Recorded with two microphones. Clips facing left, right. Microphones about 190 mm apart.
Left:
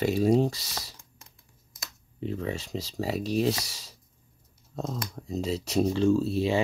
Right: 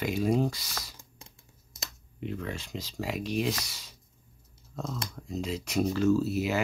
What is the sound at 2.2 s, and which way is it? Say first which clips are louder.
Speech: left 4 dB; 35° left (ahead or behind).